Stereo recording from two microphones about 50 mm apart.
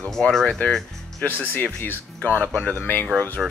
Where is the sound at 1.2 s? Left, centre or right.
Left.